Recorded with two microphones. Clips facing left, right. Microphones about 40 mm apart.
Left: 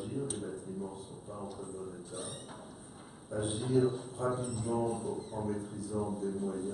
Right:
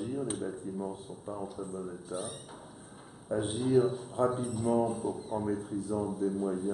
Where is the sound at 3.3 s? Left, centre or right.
Right.